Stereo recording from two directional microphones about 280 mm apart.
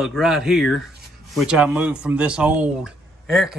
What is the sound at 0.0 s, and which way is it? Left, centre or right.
Speech, centre.